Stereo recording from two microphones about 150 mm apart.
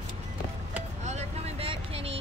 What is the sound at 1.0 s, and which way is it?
Vehicle, 45° right (ahead or behind).